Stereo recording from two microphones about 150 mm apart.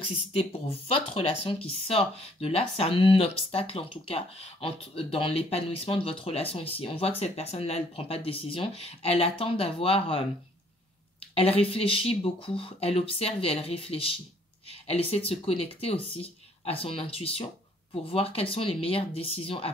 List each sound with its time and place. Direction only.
0.3 s speech: 40° left (ahead or behind)
11.3 s speech: 40° left (ahead or behind)